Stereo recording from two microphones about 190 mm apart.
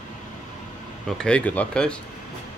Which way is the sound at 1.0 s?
5° left (ahead or behind).